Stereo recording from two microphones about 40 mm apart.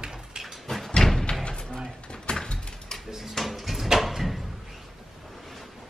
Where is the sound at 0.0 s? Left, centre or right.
Centre.